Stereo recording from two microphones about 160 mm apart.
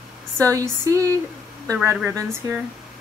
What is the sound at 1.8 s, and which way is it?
Speech, 15° right (ahead or behind).